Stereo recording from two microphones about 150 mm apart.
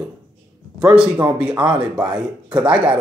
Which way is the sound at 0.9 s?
10° right (ahead or behind).